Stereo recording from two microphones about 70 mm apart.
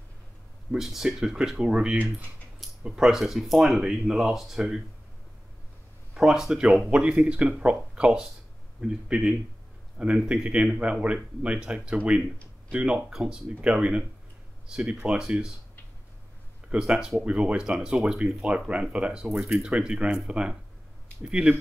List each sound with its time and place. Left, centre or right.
0.7 s speech: centre
6.1 s speech: centre
15.0 s speech: centre
16.6 s speech: centre